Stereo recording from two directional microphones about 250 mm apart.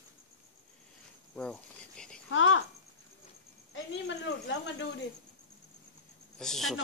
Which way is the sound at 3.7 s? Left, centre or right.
Left.